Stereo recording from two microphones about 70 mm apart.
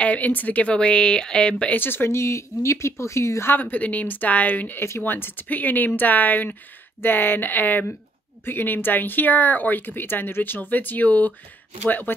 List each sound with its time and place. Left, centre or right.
0.0 s a woman's voice: left
1.8 s speech: left
3.5 s speech: left